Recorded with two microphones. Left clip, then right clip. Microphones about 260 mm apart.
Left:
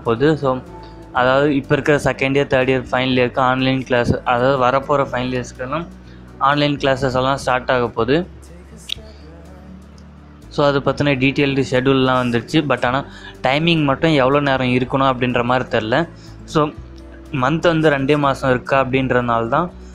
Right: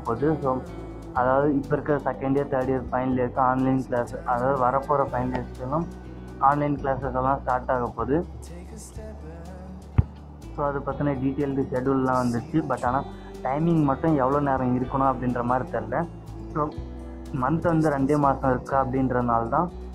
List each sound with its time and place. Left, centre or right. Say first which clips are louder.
0.0 s speech: left 8 dB; left
6.4 s speech: left 6 dB; left
10.5 s speech: left 11 dB; left
17.4 s speech: left 8 dB; left